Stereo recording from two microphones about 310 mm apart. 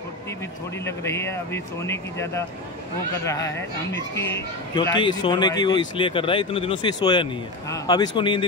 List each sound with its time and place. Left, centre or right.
0.8 s speech: centre